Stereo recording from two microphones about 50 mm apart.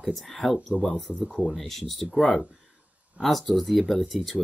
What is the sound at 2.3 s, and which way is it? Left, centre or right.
Speech, centre.